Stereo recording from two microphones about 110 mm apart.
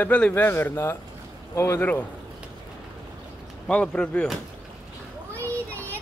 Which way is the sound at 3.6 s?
10° left (ahead or behind).